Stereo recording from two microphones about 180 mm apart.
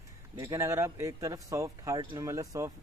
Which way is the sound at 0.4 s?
15° right (ahead or behind).